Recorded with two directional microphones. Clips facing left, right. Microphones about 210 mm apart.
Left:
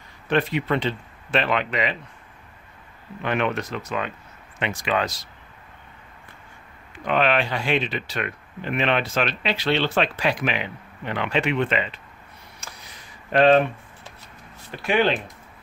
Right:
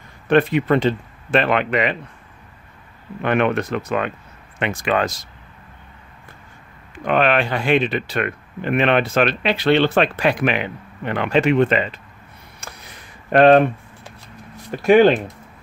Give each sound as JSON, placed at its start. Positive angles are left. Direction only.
{"t": 0.3, "sound": "speech", "side_deg": -55}
{"t": 3.2, "sound": "speech", "side_deg": -55}
{"t": 7.1, "sound": "speech", "side_deg": -55}
{"t": 12.5, "sound": "a sound", "side_deg": -55}
{"t": 14.8, "sound": "speech", "side_deg": -45}